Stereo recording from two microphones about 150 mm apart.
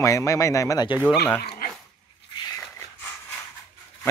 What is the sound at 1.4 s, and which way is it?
Dog, 75° left (ahead or behind).